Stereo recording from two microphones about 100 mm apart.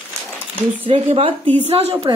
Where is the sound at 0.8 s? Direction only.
75° right (ahead or behind).